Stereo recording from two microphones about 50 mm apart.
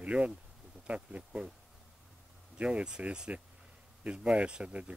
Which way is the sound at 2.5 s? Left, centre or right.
Right.